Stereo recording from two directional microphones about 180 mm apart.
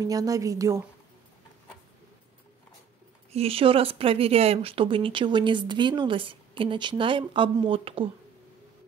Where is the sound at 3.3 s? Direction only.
30° right (ahead or behind).